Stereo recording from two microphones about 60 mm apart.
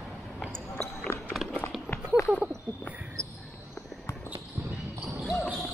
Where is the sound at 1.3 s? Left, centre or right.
Centre.